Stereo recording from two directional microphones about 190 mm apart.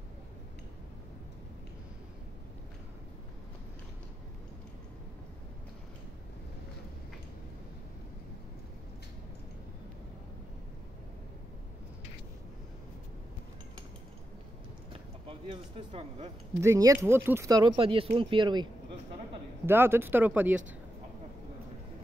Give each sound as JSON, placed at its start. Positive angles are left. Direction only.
{"t": 14.9, "sound": "a sound", "side_deg": -30}
{"t": 16.6, "sound": "speech", "side_deg": -15}
{"t": 19.6, "sound": "speech", "side_deg": -10}